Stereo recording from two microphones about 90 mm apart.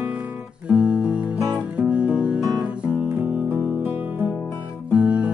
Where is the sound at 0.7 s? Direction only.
15° right (ahead or behind).